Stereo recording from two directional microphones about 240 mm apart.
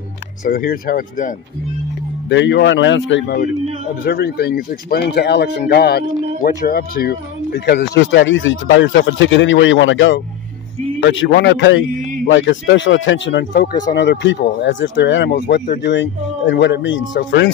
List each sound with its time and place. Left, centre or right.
0.4 s speech: left
2.2 s a man's voice: left